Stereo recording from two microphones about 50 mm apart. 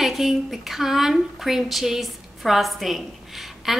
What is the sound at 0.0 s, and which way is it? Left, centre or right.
A woman's voice, centre.